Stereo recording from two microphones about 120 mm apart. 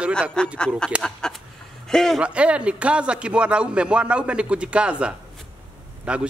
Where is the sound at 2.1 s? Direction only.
10° right (ahead or behind).